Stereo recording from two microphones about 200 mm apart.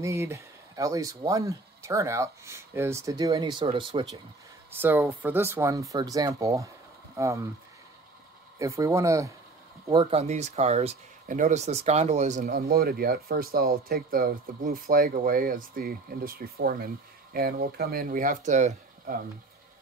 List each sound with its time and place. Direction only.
0.0 s speech: 15° right (ahead or behind)
4.7 s speech: 10° right (ahead or behind)
8.5 s speech: 15° right (ahead or behind)
9.8 s speech: 25° right (ahead or behind)